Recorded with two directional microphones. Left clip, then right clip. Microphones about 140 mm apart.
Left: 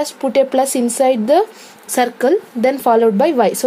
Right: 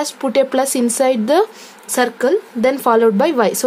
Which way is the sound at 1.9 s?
15° left (ahead or behind).